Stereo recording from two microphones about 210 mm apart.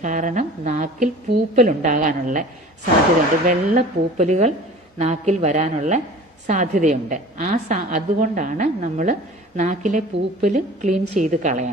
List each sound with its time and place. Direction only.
0.0 s a woman's voice: 35° right (ahead or behind)
3.4 s a woman's voice: 35° right (ahead or behind)